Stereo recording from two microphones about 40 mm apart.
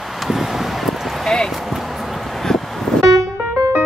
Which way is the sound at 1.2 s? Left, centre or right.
Centre.